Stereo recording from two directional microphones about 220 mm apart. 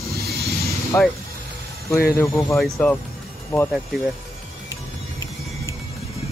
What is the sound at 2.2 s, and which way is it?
Speech, 10° left (ahead or behind).